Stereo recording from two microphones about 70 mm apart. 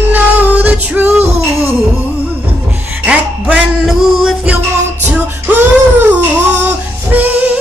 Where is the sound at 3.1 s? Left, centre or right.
Right.